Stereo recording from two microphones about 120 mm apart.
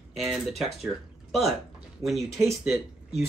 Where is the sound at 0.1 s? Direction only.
Centre (ahead or behind).